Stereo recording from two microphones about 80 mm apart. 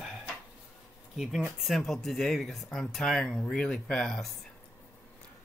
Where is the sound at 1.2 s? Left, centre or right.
Centre.